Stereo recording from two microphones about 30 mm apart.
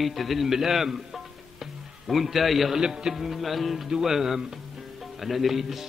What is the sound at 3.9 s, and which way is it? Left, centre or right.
Speech, centre.